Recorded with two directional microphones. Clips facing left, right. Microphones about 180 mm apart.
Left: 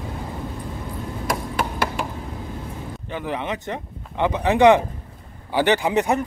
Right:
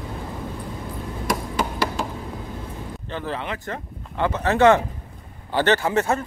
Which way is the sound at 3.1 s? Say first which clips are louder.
Left 2 dB; 15° left (ahead or behind).